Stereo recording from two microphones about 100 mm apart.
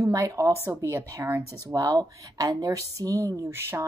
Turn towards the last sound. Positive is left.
turn(degrees=-25)  # may be behind; listen again after turning